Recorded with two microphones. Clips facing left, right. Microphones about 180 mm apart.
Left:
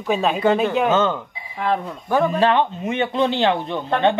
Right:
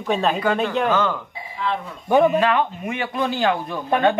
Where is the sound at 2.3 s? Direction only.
30° left (ahead or behind).